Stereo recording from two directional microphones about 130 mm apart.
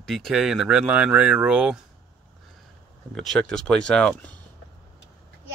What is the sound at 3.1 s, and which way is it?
Speech, 5° left (ahead or behind).